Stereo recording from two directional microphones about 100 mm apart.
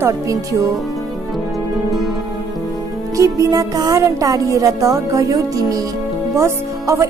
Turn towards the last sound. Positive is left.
turn(degrees=-30)  # may be behind; listen again after turning